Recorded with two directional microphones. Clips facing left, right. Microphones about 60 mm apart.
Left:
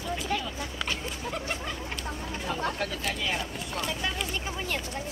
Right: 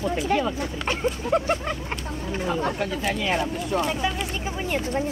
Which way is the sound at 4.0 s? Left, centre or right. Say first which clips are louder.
Right 5 dB; centre.